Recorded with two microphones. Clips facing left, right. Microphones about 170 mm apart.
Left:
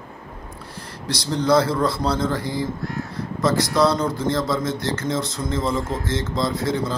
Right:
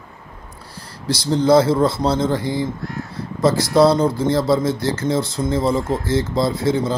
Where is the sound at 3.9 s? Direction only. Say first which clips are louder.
Right 5 dB; 30° right (ahead or behind).